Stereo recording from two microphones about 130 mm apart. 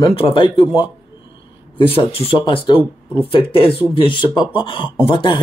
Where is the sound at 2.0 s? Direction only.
45° left (ahead or behind).